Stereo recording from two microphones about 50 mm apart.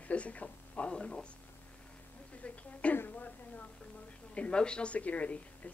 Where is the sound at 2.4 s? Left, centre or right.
Left.